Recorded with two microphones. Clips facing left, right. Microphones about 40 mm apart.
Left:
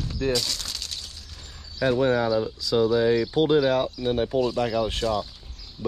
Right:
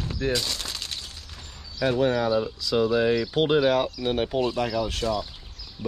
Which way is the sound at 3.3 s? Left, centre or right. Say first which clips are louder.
Left 1 dB; right.